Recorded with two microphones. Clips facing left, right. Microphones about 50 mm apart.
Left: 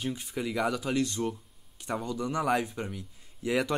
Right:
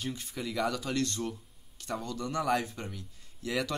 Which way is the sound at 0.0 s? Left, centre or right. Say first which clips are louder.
Left 4 dB; centre.